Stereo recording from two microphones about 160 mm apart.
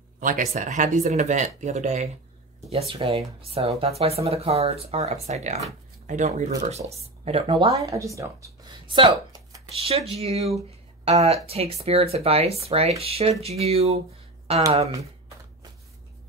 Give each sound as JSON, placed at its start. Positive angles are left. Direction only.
{"t": 0.2, "sound": "speech", "side_deg": -50}
{"t": 7.2, "sound": "speech", "side_deg": -35}
{"t": 7.7, "sound": "speech", "side_deg": -20}
{"t": 8.9, "sound": "speech", "side_deg": -35}
{"t": 11.4, "sound": "speech", "side_deg": -40}